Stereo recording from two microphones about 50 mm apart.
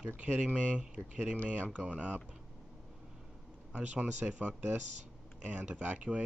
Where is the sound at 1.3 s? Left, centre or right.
Left.